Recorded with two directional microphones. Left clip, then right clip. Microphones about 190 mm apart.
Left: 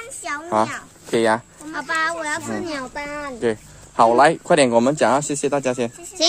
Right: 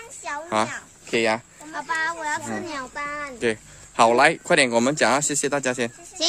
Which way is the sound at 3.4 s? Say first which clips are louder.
Left 2 dB; 15° right (ahead or behind).